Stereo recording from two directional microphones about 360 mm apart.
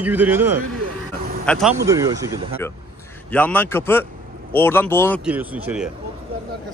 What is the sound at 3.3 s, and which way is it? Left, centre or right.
A man's voice, centre.